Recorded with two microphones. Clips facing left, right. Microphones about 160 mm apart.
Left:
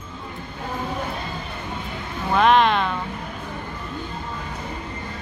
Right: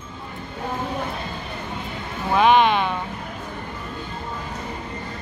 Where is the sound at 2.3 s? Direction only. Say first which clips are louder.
Right 1 dB; 5° right (ahead or behind).